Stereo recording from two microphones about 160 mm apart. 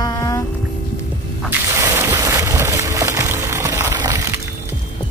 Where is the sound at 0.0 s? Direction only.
20° left (ahead or behind).